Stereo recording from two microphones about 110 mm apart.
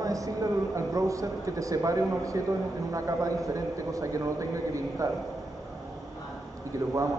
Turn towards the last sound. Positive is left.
turn(degrees=-30)  # may be behind; listen again after turning